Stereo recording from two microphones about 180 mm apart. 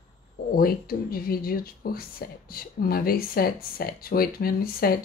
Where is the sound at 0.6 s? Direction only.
55° left (ahead or behind).